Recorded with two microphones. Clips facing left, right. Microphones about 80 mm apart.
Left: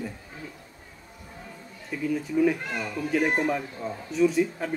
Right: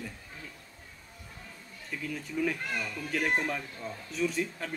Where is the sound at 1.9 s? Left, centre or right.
Centre.